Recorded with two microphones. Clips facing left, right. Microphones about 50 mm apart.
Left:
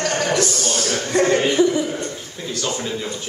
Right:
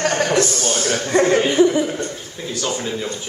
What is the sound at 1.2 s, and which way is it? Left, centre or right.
Speech, centre.